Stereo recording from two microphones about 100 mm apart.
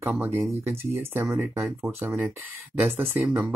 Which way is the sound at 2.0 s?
15° right (ahead or behind).